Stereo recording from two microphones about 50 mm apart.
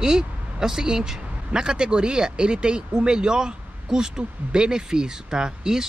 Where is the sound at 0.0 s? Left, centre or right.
Centre.